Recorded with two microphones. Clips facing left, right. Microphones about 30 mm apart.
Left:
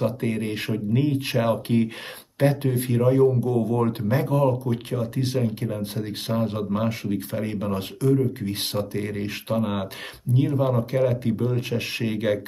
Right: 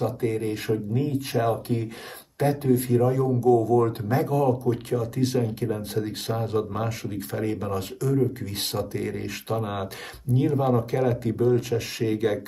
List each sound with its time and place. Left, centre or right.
0.0 s speech: left
4.1 s speech: left
7.6 s speech: left